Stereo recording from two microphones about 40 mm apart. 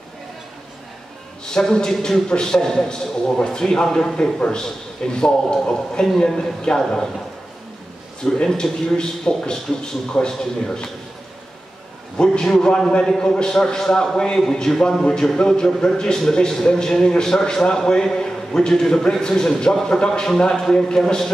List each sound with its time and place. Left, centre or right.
1.4 s a man's voice: centre
8.2 s a man's voice: centre
12.2 s a man's voice: centre
14.1 s a man's voice: left
14.4 s a man's voice: centre